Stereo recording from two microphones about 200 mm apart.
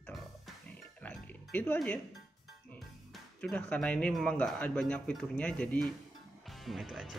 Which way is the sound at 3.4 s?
5° left (ahead or behind).